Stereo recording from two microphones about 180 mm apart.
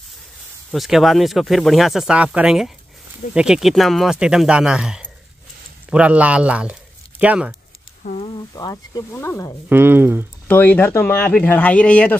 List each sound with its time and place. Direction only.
0.7 s speech: centre (ahead or behind)
8.0 s a sound: 40° left (ahead or behind)
8.5 s speech: 20° left (ahead or behind)
9.7 s speech: 10° right (ahead or behind)
10.5 s speech: 10° left (ahead or behind)